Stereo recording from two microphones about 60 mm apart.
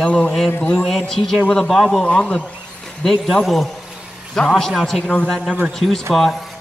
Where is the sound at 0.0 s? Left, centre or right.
Centre.